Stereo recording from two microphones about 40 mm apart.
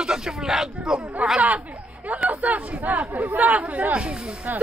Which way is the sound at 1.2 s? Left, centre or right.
Right.